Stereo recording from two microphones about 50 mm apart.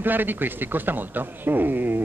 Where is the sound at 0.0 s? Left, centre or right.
Right.